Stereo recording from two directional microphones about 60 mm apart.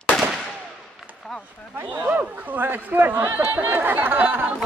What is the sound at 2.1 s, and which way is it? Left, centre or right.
Speech, right.